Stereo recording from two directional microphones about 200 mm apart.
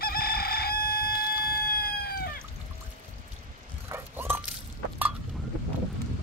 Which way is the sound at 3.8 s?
10° right (ahead or behind).